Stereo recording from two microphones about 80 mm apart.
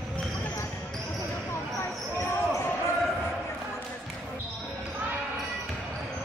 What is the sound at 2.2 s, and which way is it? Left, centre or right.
Basketball bounce, left.